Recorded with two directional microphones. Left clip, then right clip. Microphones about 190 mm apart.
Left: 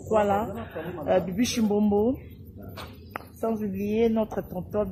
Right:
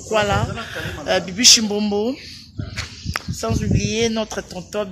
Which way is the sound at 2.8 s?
20° right (ahead or behind).